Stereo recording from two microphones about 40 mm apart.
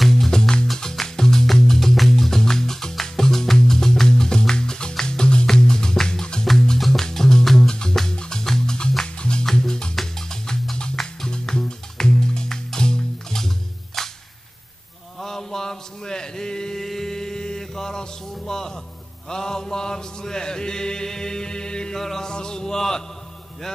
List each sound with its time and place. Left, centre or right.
0.0 s music: centre
0.3 s music: centre
15.1 s mantra: centre
16.8 s a sound: centre
19.2 s chant: centre
21.9 s music: centre